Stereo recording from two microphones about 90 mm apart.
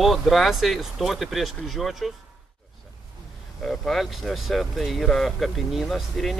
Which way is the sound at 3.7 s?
5° left (ahead or behind).